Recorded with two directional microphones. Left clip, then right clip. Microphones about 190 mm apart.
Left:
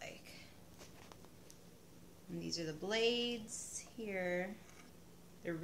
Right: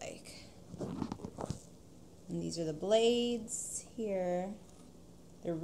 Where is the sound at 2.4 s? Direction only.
45° right (ahead or behind).